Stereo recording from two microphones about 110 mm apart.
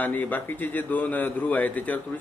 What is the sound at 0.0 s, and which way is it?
A man's voice, 15° left (ahead or behind).